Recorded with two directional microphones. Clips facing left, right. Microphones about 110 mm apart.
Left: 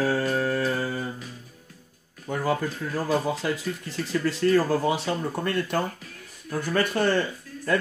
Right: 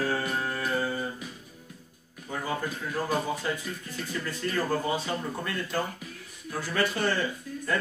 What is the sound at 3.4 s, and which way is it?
Speech, 90° left.